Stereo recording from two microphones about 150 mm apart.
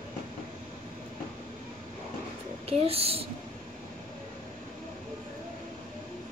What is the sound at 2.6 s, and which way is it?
Speech, 40° right (ahead or behind).